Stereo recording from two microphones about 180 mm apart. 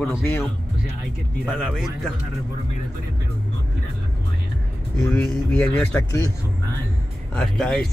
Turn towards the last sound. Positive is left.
turn(degrees=5)  # may be behind; listen again after turning